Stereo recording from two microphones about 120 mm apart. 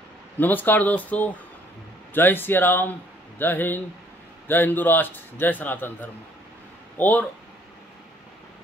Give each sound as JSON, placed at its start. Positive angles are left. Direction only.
{"t": 0.4, "sound": "a man's voice", "side_deg": 15}